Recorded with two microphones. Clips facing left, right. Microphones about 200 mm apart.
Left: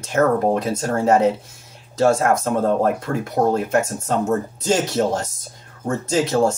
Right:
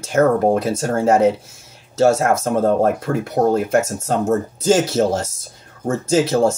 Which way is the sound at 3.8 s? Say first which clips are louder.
Right 2 dB; 45° right (ahead or behind).